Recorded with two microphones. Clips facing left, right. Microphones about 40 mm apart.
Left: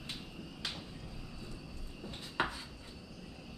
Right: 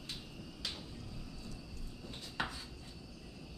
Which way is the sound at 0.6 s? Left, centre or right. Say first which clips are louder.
Left 2 dB; centre.